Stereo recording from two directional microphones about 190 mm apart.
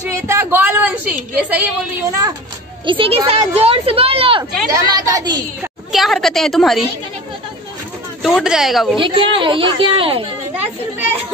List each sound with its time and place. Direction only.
0.3 s a woman's voice: 10° right (ahead or behind)
2.8 s speech: 25° right (ahead or behind)
5.6 s a woman's voice: centre (ahead or behind)
8.2 s speech: centre (ahead or behind)
8.9 s speech: 25° right (ahead or behind)
10.5 s children playing: 10° right (ahead or behind)